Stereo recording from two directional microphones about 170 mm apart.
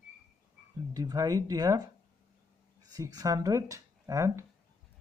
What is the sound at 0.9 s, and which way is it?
Speech, 20° right (ahead or behind).